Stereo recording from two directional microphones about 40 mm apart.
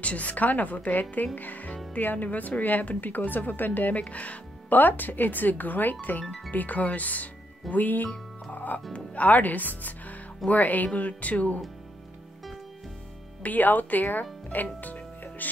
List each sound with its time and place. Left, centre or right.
0.0 s a woman's voice: left
4.0 s a woman's voice: left
13.4 s speech: left